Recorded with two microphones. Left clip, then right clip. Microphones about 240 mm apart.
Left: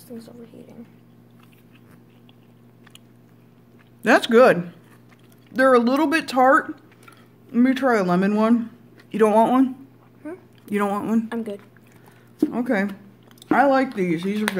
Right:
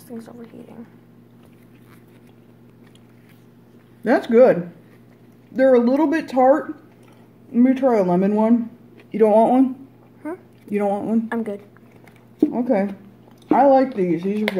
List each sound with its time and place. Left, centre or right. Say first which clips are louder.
0.2 s a woman's voice: right 3 dB; centre
4.0 s speech: even; left
10.7 s speech: right 2 dB; left
11.2 s a woman's voice: right 4 dB; centre
12.4 s speech: right 3 dB; left